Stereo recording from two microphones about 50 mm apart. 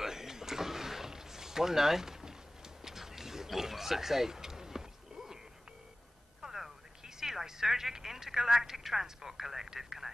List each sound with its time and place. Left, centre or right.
0.0 s a sound: centre
2.8 s roaring cats: centre
6.4 s telephone: centre
7.2 s speech: centre